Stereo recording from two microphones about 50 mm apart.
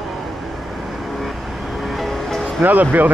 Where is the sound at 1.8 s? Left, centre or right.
Centre.